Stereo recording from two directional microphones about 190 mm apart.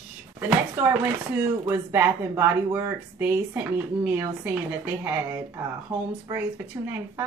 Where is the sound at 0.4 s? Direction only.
10° right (ahead or behind).